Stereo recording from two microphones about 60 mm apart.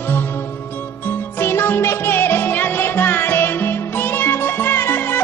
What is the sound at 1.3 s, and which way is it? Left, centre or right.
Music, left.